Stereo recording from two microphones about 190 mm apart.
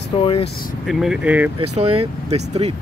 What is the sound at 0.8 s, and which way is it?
Speech, centre (ahead or behind).